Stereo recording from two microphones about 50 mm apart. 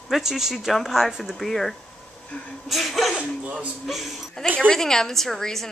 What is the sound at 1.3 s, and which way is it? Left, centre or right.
Speech, centre.